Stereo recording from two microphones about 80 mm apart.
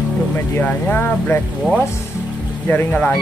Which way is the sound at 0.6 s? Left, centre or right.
Left.